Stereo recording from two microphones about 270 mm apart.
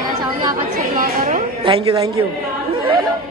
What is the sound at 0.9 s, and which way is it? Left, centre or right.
A man's voice, right.